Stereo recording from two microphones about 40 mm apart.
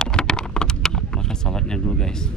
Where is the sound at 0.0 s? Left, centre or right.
Centre.